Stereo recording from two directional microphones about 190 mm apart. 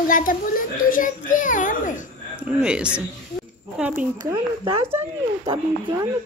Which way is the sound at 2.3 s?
5° right (ahead or behind).